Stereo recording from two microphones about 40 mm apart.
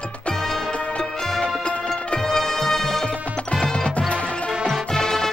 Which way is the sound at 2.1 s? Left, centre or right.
Centre.